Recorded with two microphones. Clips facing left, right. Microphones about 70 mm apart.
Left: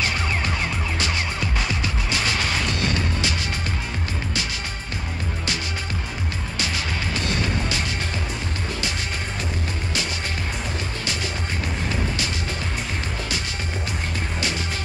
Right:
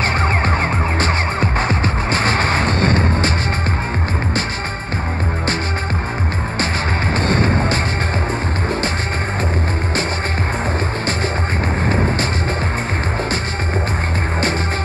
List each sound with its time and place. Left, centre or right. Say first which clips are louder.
0.2 s music: right 8 dB; right
6.6 s music: right 7 dB; right
11.8 s music: right 9 dB; right